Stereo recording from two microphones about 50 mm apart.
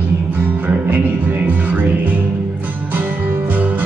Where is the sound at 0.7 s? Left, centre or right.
Right.